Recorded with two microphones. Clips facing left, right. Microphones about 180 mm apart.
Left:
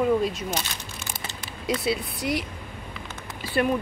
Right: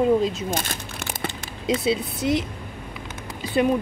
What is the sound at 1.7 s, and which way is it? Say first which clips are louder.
Speech: right 4 dB; 25° right (ahead or behind).